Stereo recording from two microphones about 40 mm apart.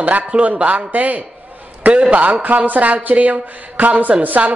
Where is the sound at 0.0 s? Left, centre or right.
Right.